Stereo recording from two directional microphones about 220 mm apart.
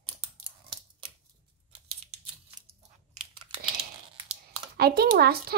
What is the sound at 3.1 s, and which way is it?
Crunch, 25° right (ahead or behind).